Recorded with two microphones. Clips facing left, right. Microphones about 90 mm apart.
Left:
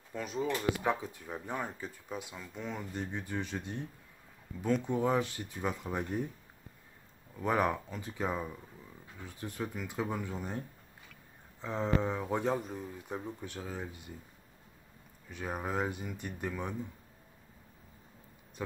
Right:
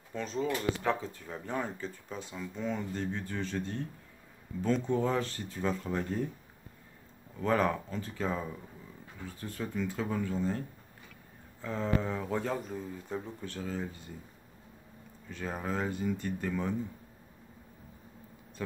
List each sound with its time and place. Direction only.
0.1 s speech: 10° left (ahead or behind)
7.3 s speech: 15° left (ahead or behind)
11.6 s speech: 20° left (ahead or behind)
15.2 s speech: 15° left (ahead or behind)